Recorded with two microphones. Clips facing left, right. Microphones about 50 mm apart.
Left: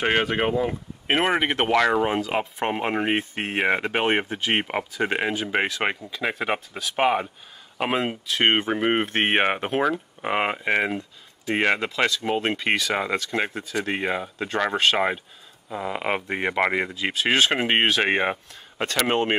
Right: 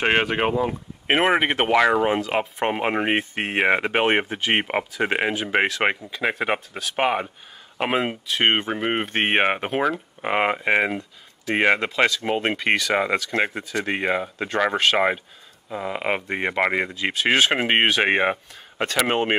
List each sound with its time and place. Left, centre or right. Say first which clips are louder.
0.7 s speech: right 2 dB; centre